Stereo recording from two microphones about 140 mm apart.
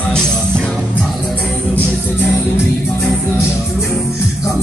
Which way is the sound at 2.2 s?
15° left (ahead or behind).